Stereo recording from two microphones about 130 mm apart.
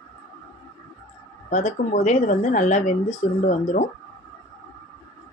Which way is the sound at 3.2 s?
90° left.